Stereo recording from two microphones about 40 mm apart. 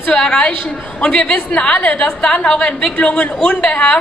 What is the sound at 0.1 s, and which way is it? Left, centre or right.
Speech, left.